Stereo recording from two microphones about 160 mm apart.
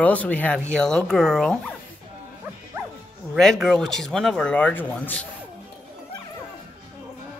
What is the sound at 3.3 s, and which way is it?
Speech, centre (ahead or behind).